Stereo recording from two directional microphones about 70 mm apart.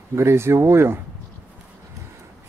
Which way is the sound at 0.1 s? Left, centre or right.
Right.